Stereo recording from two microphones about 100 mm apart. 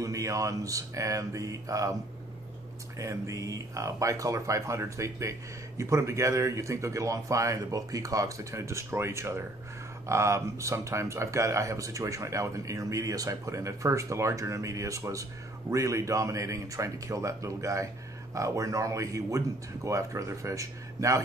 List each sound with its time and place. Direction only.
0.0 s speech: 35° right (ahead or behind)
3.0 s speech: 30° right (ahead or behind)